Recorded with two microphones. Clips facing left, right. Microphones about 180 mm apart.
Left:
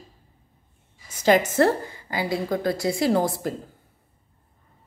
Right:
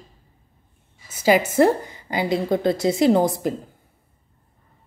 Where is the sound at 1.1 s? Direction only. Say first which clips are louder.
Right 1 dB; 10° right (ahead or behind).